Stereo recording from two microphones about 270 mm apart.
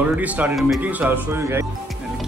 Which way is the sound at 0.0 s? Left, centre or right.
Centre.